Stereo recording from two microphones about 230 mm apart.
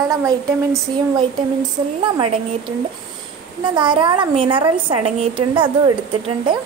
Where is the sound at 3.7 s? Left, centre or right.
Centre.